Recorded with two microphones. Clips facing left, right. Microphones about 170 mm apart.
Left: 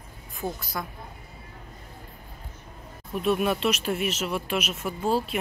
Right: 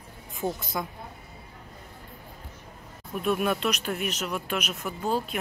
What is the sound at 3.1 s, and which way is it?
Speech, centre (ahead or behind).